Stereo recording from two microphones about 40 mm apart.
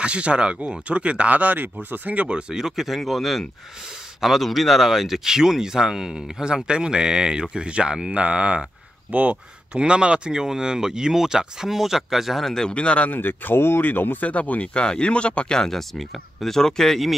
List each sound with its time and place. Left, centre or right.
0.0 s speech: right
1.3 s speech: right
2.5 s speech: centre; by 8.6 s right
9.1 s speech: right
9.8 s speech: right; by 12.4 s centre
12.4 s speech: centre
12.7 s speech: left
13.1 s speech: left
14.2 s speech: left; by 17.0 s centre